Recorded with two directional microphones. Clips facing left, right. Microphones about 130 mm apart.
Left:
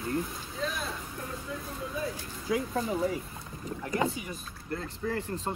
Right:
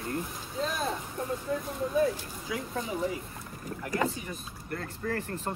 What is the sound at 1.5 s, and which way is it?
Speech, 45° right (ahead or behind).